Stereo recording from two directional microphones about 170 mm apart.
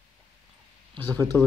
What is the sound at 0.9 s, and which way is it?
Speech, 10° left (ahead or behind).